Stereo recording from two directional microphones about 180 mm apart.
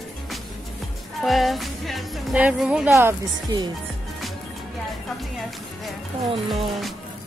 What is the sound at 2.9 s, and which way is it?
Speech, 20° right (ahead or behind).